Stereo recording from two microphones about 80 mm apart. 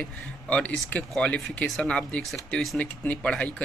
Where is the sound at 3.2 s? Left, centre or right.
Centre.